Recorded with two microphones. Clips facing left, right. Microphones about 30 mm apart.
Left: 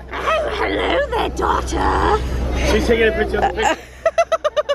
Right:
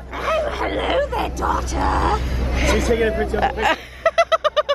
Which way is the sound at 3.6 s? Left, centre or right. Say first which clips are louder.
Left 1 dB; right.